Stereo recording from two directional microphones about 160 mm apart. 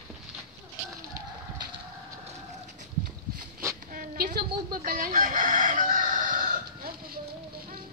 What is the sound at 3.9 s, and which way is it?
Crowing, 55° right (ahead or behind).